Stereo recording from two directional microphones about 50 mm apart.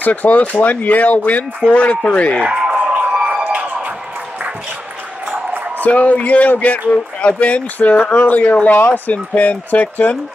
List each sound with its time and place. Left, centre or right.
0.0 s a man's voice: left
2.6 s a sound: centre
5.8 s a man's voice: left